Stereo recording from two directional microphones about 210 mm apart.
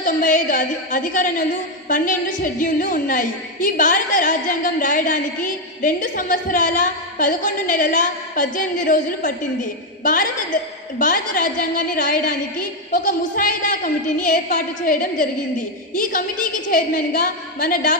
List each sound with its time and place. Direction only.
0.0 s a sound: 40° left (ahead or behind)
1.9 s a woman's voice: 40° left (ahead or behind)
11.0 s a woman's voice: 40° left (ahead or behind)